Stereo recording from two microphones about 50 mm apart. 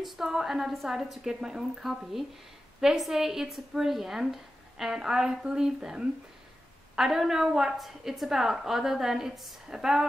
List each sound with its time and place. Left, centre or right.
0.0 s a woman's voice: centre